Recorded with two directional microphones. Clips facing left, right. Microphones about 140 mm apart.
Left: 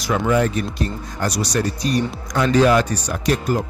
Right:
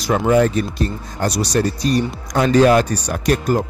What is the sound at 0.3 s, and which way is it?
Speech, 35° right (ahead or behind).